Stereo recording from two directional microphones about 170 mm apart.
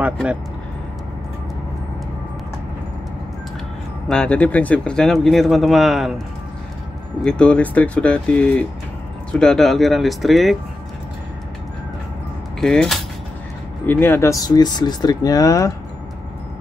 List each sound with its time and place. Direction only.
0.0 s speech: 5° right (ahead or behind)
4.1 s speech: 5° left (ahead or behind)
12.5 s speech: centre (ahead or behind)
13.8 s speech: 10° left (ahead or behind)